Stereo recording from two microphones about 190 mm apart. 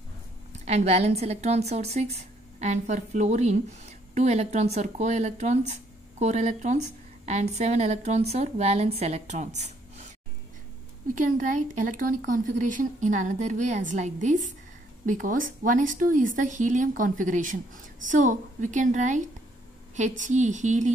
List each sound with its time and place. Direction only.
0.7 s a woman's voice: 35° right (ahead or behind)
11.1 s a woman's voice: 40° right (ahead or behind)